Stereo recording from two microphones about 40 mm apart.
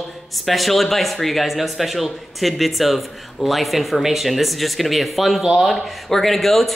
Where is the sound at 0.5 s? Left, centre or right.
Centre.